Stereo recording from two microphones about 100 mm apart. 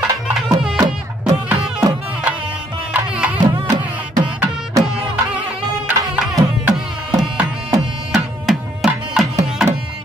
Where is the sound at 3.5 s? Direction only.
50° right (ahead or behind).